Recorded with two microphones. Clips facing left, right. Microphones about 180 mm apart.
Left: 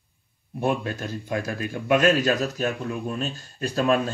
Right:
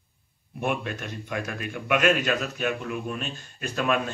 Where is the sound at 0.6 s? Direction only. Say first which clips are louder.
Left 3 dB; 35° left (ahead or behind).